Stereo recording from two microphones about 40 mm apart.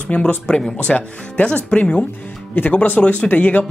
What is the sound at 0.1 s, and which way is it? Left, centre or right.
Speech, left.